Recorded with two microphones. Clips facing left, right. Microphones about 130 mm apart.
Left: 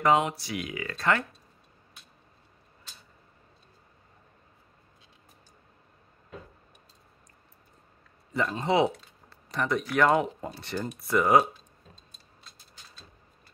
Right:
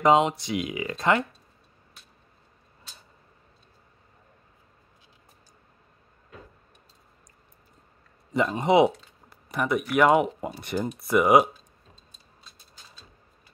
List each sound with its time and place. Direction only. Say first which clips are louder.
0.0 s speech: right 4 dB; 20° right (ahead or behind)
8.3 s speech: right 5 dB; 20° right (ahead or behind)